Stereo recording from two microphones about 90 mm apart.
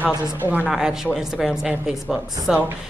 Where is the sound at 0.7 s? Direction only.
5° right (ahead or behind).